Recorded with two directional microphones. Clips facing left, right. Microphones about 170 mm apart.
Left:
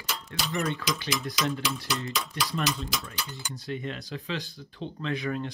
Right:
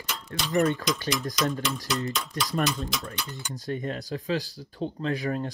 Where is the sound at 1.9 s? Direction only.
Centre (ahead or behind).